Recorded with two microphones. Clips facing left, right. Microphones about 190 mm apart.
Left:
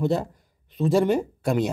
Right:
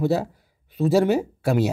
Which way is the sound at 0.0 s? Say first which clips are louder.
Right 2 dB; 5° right (ahead or behind).